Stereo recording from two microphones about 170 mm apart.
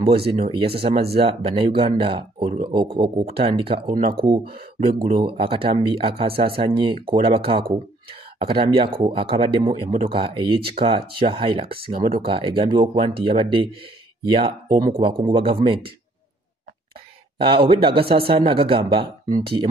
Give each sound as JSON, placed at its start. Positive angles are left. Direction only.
{"t": 0.0, "sound": "speech", "side_deg": -35}
{"t": 5.0, "sound": "speech", "side_deg": -30}
{"t": 14.7, "sound": "speech", "side_deg": -50}
{"t": 15.0, "sound": "speech", "side_deg": -30}
{"t": 17.4, "sound": "speech", "side_deg": -30}